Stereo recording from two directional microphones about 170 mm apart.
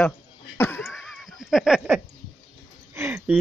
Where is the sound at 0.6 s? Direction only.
10° left (ahead or behind).